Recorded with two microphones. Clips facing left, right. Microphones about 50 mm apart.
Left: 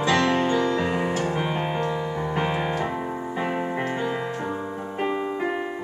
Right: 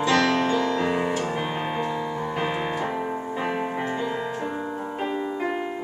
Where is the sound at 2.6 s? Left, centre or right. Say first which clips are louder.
Left 1 dB; centre.